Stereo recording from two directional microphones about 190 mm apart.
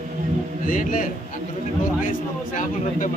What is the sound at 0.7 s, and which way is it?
Speech, 45° left (ahead or behind).